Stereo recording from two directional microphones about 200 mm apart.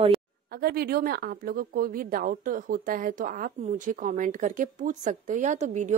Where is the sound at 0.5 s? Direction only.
50° right (ahead or behind).